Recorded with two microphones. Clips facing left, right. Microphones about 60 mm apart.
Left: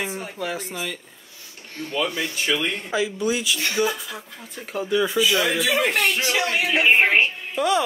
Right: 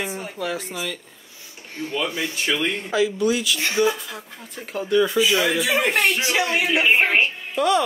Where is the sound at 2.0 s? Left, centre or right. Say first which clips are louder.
Even; right.